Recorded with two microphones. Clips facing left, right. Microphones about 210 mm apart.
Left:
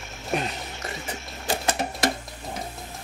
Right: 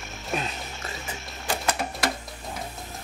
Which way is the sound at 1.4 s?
25° left (ahead or behind).